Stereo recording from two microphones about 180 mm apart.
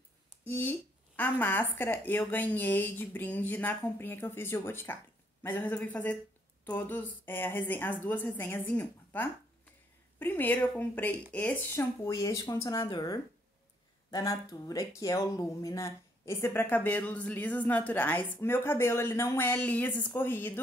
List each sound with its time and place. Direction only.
0.5 s speech: 10° left (ahead or behind)